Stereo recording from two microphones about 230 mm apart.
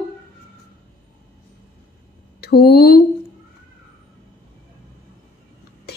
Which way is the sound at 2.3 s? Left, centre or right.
Left.